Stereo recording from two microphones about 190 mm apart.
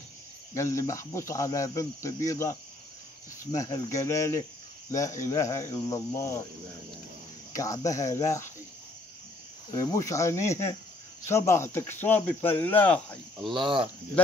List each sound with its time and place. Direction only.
0.6 s speech: 15° left (ahead or behind)
3.5 s speech: 20° left (ahead or behind)
7.5 s speech: 15° left (ahead or behind)
9.7 s speech: 20° left (ahead or behind)
13.6 s speech: 25° right (ahead or behind)